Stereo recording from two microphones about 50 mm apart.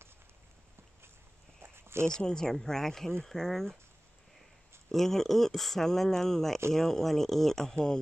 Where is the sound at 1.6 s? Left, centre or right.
Right.